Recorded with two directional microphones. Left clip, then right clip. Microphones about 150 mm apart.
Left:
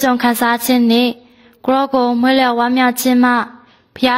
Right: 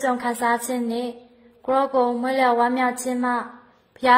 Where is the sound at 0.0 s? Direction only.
25° left (ahead or behind).